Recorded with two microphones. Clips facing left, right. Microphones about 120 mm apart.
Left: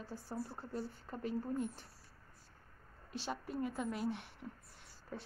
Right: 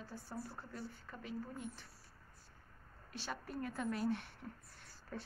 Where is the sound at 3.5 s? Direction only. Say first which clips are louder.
Even; 10° left (ahead or behind).